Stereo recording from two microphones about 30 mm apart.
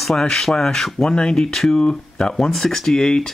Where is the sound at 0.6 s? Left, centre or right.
Left.